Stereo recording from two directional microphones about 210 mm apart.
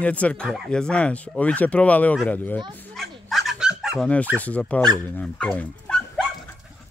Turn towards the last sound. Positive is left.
turn(degrees=5)  # may be behind; listen again after turning